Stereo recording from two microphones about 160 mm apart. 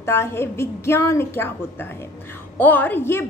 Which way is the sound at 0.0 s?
15° left (ahead or behind).